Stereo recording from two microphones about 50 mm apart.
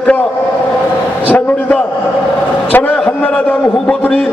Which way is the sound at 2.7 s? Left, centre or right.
Left.